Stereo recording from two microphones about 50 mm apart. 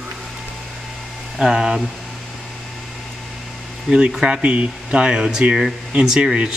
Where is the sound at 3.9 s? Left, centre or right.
Centre.